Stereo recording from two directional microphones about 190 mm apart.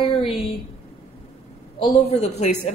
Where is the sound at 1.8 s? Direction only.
30° left (ahead or behind).